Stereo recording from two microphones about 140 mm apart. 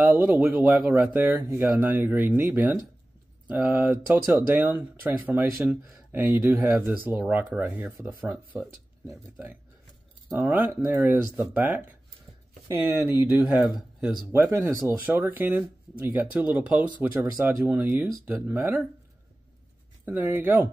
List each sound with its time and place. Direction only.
0.0 s speech: 15° right (ahead or behind)
10.3 s speech: 15° right (ahead or behind)
14.3 s speech: 20° right (ahead or behind)
20.1 s speech: 10° right (ahead or behind)